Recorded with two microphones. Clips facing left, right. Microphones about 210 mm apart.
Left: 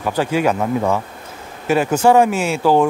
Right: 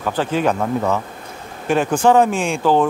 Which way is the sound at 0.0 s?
10° left (ahead or behind).